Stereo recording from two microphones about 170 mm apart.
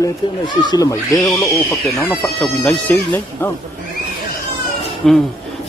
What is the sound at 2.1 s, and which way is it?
Speech, 5° left (ahead or behind).